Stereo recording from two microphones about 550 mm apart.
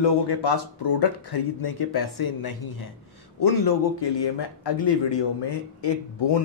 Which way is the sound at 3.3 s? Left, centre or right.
Left.